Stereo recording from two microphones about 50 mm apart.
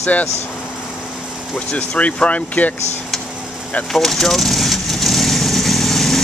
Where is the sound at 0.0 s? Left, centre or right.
Left.